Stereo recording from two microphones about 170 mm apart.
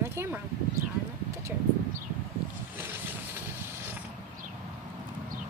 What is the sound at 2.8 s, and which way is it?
Vehicle, 15° right (ahead or behind).